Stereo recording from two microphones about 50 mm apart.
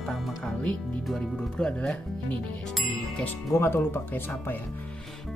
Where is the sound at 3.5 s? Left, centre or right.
Left.